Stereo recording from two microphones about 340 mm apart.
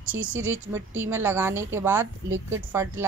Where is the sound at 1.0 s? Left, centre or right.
Centre.